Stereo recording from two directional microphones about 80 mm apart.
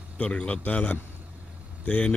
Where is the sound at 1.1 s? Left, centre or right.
Right.